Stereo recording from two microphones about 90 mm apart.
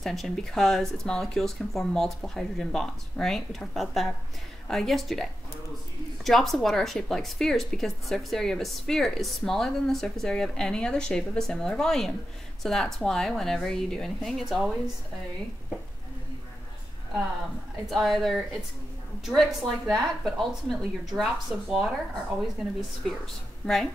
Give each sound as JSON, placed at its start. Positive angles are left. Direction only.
{"t": 0.0, "sound": "a woman's voice", "side_deg": 0}
{"t": 17.8, "sound": "a woman's voice", "side_deg": 0}